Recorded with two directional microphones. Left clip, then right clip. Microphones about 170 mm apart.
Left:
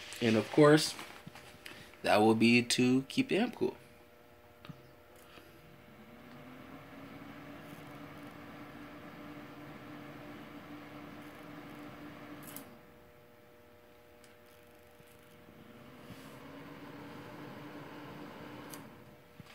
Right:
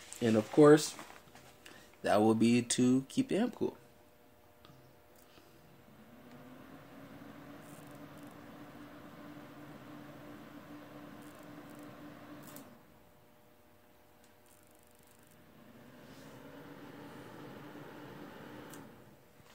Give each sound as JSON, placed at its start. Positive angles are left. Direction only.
{"t": 0.0, "sound": "speech", "side_deg": -60}
{"t": 1.6, "sound": "speech", "side_deg": -55}